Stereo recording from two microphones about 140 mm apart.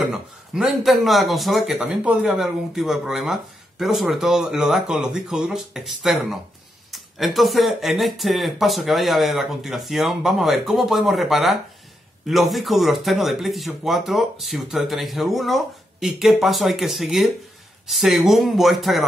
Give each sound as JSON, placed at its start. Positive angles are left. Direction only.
{"t": 0.1, "sound": "a man's voice", "side_deg": 0}